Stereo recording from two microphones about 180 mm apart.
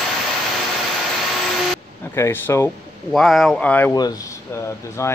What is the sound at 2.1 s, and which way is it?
Speech, 15° left (ahead or behind).